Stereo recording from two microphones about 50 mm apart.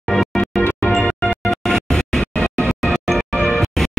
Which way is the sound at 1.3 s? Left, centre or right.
Centre.